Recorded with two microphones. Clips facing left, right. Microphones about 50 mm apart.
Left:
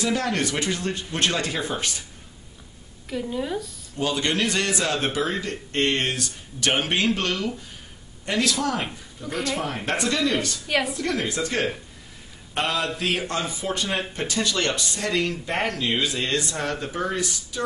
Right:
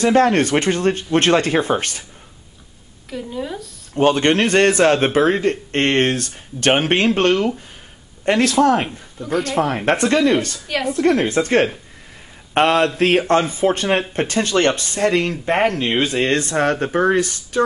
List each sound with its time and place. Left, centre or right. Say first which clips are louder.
0.0 s speech: right 10 dB; right
3.1 s speech: right 1 dB; centre
3.9 s speech: right 10 dB; right